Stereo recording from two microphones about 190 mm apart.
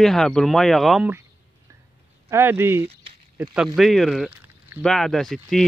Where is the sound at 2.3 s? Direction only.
10° right (ahead or behind).